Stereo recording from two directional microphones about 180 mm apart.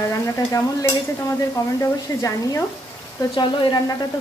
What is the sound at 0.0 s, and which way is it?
Stir, 15° left (ahead or behind).